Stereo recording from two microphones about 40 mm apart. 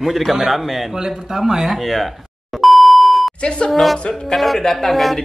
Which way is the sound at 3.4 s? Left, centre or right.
Left.